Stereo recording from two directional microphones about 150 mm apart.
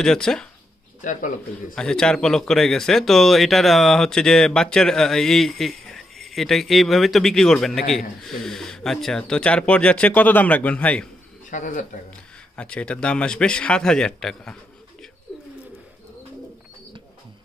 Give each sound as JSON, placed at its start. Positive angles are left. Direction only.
{"t": 0.0, "sound": "speech", "side_deg": 5}
{"t": 1.8, "sound": "speech", "side_deg": 5}
{"t": 11.5, "sound": "speech", "side_deg": 55}
{"t": 12.5, "sound": "speech", "side_deg": 5}